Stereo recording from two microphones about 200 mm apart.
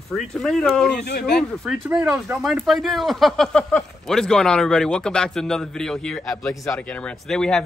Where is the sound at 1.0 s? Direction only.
55° left (ahead or behind).